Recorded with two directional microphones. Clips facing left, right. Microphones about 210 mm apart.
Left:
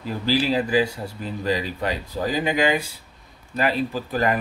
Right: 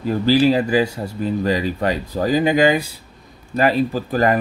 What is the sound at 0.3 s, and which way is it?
Speech, 45° right (ahead or behind).